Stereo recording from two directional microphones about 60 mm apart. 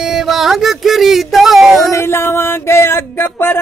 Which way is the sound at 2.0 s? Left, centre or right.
Left.